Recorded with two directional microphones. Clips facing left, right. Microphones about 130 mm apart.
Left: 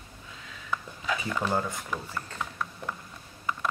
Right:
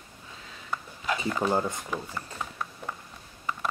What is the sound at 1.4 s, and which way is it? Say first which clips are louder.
Speech: right 4 dB; 20° right (ahead or behind).